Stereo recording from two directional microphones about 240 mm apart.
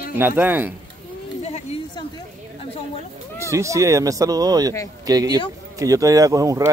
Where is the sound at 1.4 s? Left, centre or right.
Left.